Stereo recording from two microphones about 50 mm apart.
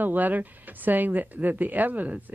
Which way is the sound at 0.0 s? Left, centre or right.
Right.